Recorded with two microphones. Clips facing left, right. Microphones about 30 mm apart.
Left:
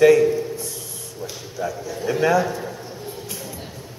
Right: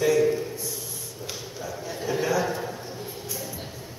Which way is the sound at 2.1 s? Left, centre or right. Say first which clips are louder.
Left 7 dB; left.